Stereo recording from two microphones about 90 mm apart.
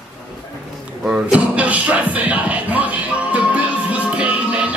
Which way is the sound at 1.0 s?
10° right (ahead or behind).